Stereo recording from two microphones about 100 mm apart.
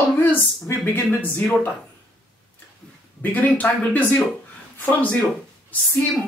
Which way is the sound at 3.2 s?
15° left (ahead or behind).